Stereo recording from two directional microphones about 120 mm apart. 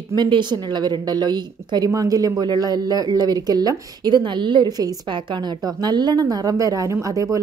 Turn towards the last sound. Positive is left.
turn(degrees=-30)  # may be behind; listen again after turning